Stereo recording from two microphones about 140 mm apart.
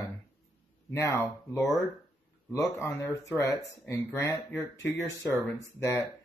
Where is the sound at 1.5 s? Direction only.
Centre (ahead or behind).